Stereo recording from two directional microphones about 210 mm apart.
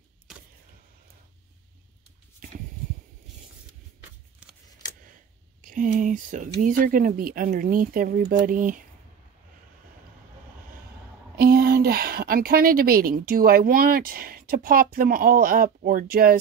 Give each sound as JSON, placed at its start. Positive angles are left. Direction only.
{"t": 0.3, "sound": "a sound", "side_deg": 0}
{"t": 4.4, "sound": "scissors", "side_deg": -5}
{"t": 5.6, "sound": "speech", "side_deg": -40}
{"t": 11.3, "sound": "a woman's voice", "side_deg": -45}